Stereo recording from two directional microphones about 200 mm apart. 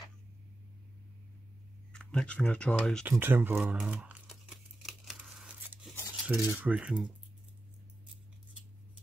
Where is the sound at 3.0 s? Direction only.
10° right (ahead or behind).